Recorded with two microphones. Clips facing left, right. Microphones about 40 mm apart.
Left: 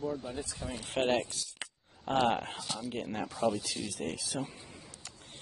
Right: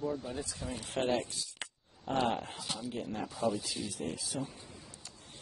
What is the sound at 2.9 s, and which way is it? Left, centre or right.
Speech, left.